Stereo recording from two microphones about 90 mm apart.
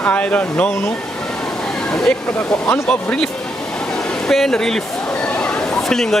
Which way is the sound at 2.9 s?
10° left (ahead or behind).